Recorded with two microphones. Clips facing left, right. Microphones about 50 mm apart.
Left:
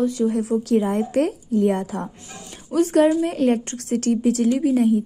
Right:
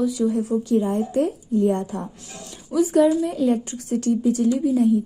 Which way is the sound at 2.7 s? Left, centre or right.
Left.